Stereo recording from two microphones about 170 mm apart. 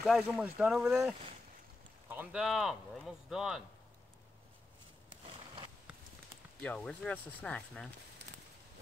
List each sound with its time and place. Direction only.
0.0 s speech: centre (ahead or behind)
2.0 s a sound: 10° right (ahead or behind)
2.4 s speech: centre (ahead or behind)
5.2 s a sound: 30° right (ahead or behind)
5.9 s clip-clop: 5° right (ahead or behind)
6.6 s speech: 5° left (ahead or behind)